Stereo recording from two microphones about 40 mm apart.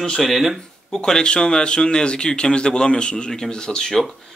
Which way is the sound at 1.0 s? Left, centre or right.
Left.